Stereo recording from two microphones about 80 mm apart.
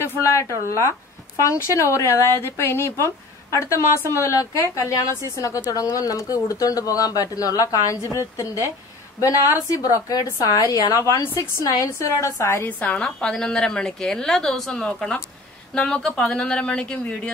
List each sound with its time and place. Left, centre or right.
0.0 s a woman's voice: left
12.6 s a woman's voice: left
13.0 s a woman's voice: centre